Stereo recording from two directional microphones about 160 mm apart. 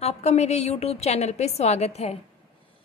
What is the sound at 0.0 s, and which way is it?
A woman's voice, 40° left (ahead or behind).